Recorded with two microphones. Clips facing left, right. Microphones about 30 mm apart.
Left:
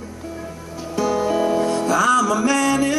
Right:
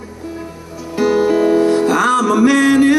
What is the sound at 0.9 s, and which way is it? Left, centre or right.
Music, right.